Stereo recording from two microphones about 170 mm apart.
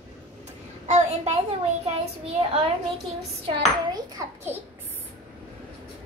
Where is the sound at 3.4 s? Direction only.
25° right (ahead or behind).